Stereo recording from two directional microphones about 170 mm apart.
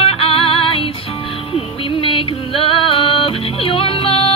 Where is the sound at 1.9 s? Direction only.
30° left (ahead or behind).